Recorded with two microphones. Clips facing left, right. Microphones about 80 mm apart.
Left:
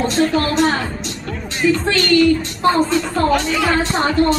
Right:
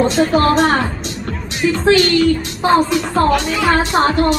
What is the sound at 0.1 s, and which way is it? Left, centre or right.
Speech, centre.